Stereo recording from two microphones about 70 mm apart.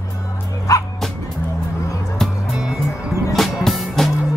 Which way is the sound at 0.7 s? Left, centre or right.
Left.